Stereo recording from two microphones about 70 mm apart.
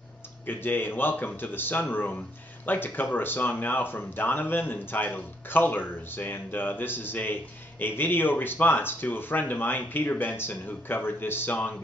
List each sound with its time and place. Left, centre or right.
0.5 s speech: left